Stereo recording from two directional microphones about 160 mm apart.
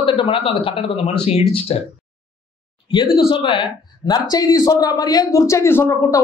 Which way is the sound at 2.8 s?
30° left (ahead or behind).